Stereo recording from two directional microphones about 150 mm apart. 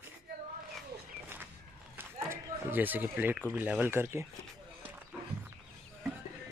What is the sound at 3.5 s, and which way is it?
Speech, 10° right (ahead or behind).